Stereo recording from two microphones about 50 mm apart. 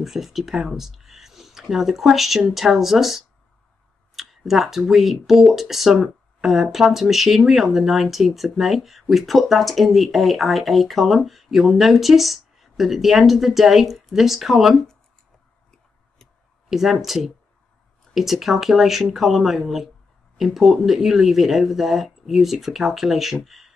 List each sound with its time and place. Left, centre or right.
0.0 s speech: centre
16.6 s speech: centre